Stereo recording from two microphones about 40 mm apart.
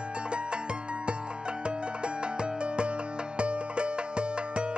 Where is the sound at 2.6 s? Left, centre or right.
Right.